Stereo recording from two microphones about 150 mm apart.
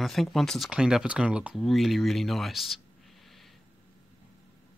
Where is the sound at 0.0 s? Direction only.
Centre (ahead or behind).